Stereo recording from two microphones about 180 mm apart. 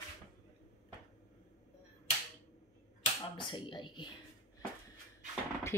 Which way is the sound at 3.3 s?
25° left (ahead or behind).